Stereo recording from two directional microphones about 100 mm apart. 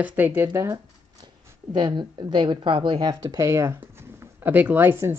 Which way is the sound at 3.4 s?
30° right (ahead or behind).